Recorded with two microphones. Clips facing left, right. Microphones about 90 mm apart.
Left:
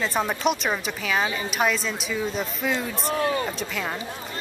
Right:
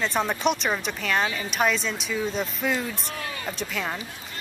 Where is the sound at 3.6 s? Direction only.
Centre (ahead or behind).